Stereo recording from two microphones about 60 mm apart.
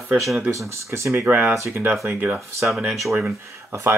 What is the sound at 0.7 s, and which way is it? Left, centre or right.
Speech, right.